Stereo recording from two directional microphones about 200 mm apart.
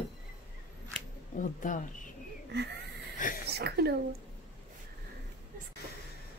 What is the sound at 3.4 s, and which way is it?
Speech, 55° right (ahead or behind).